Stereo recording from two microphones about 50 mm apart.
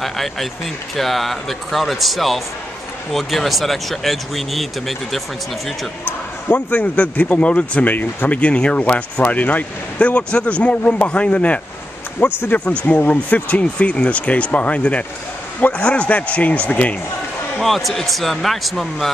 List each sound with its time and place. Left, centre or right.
0.0 s speech: centre
6.0 s a man's voice: left
12.8 s speech: left
13.1 s a man's voice: left
17.6 s speech: centre